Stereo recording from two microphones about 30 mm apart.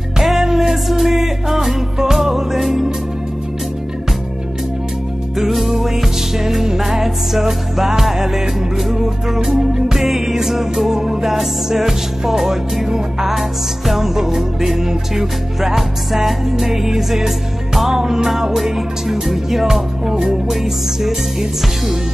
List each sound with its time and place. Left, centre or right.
0.2 s music: centre
5.4 s music: centre
21.0 s music: centre